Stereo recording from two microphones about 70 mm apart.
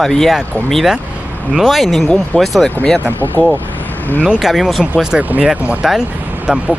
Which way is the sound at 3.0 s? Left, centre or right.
Right.